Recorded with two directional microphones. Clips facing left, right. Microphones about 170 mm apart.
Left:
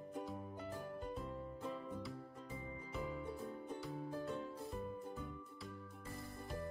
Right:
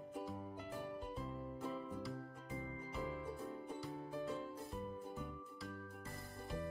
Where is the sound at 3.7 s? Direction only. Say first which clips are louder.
Even; centre (ahead or behind).